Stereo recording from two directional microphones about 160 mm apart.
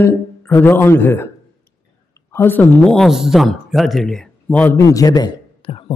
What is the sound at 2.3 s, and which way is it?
Speech, 15° left (ahead or behind).